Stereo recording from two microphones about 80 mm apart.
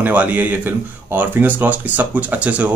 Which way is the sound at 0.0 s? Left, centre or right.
Centre.